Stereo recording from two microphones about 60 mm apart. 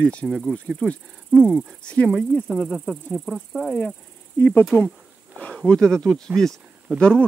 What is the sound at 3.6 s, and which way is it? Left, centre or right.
Speech, left.